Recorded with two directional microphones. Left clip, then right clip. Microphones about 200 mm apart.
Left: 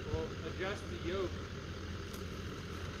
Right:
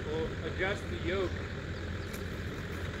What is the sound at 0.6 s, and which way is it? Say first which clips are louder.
Speech: right 7 dB; 35° left (ahead or behind).